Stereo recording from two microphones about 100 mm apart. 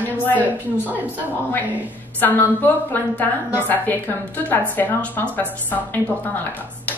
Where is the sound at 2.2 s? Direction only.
15° left (ahead or behind).